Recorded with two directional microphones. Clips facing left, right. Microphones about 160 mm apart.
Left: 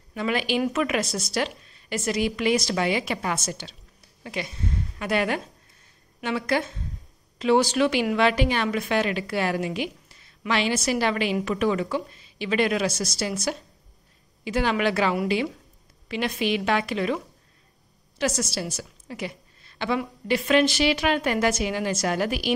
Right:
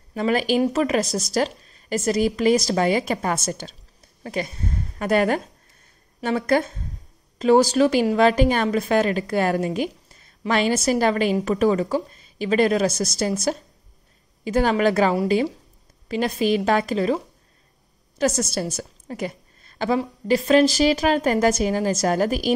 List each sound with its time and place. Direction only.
0.1 s a woman's voice: 40° right (ahead or behind)
14.4 s a woman's voice: 45° right (ahead or behind)
18.1 s a woman's voice: 45° right (ahead or behind)